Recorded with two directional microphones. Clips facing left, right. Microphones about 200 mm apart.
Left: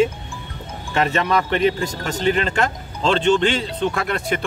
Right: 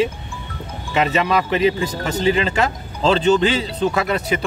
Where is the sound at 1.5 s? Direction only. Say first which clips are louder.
Right 1 dB; centre (ahead or behind).